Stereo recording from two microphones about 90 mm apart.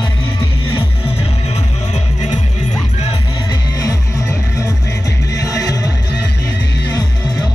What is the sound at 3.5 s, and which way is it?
Music, 40° left (ahead or behind).